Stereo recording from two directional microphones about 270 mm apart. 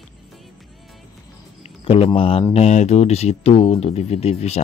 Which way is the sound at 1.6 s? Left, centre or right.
Left.